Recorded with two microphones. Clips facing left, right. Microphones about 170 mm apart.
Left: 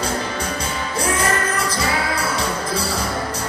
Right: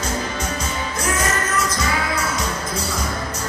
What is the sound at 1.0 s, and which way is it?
Music, 30° left (ahead or behind).